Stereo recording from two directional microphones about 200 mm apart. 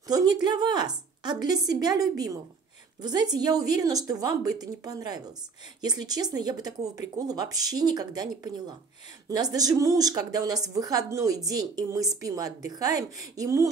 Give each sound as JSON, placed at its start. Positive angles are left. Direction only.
{"t": 0.1, "sound": "speech", "side_deg": -20}
{"t": 3.0, "sound": "a woman's voice", "side_deg": -20}